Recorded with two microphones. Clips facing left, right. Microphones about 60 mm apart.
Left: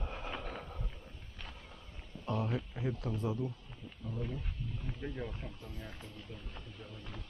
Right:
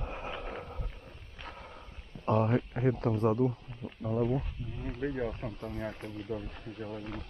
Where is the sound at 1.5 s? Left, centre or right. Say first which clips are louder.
Right 6 dB; right.